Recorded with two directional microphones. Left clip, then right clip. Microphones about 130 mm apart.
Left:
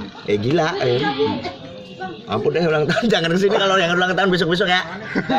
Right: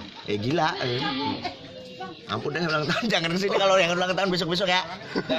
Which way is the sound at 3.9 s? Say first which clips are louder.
Left 7 dB; 10° right (ahead or behind).